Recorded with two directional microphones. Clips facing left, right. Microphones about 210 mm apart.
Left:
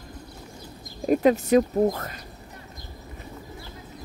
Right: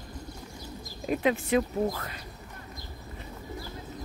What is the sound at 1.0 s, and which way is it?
Speech, 40° left (ahead or behind).